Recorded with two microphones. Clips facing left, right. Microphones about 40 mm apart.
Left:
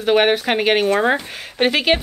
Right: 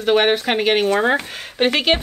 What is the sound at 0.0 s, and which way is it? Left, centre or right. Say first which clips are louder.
Speech: left 1 dB; centre.